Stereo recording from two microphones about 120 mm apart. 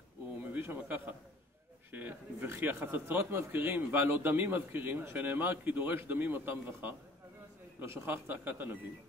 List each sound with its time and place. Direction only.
0.4 s speech: 15° right (ahead or behind)